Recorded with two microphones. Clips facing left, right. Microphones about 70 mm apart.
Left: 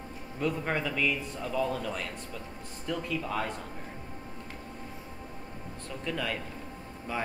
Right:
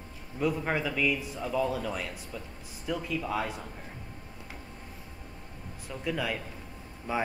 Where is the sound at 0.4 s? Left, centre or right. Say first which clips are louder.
Right 1 dB; centre.